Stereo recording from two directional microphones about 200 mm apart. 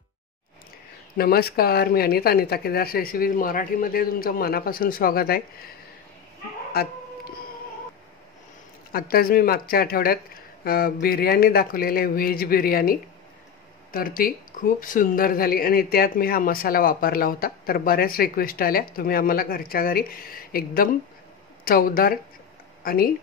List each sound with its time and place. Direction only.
1.1 s speech: 50° left (ahead or behind)
6.7 s speech: 50° left (ahead or behind)
8.9 s speech: 50° left (ahead or behind)